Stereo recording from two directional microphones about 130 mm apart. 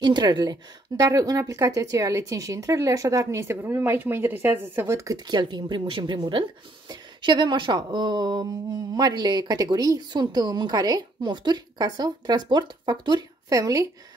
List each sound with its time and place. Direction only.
0.0 s a woman's voice: 35° right (ahead or behind)